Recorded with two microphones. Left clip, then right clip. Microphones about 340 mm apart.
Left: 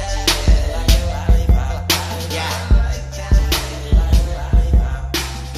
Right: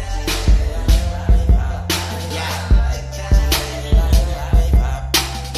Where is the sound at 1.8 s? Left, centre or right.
Centre.